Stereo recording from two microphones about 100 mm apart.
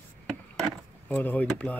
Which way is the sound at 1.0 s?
15° left (ahead or behind).